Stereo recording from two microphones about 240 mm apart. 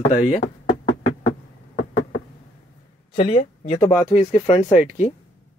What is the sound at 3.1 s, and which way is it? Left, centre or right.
Speech, left.